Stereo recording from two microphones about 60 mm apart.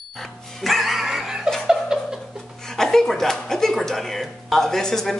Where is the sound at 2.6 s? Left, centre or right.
Centre.